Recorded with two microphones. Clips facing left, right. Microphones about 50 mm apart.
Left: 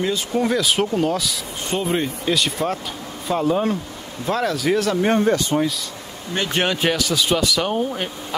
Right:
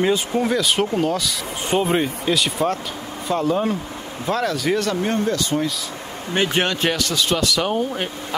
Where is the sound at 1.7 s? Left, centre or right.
Centre.